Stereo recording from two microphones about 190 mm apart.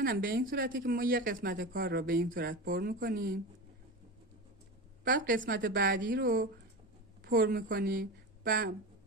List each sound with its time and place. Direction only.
0.0 s speech: 50° right (ahead or behind)
5.0 s speech: 45° right (ahead or behind)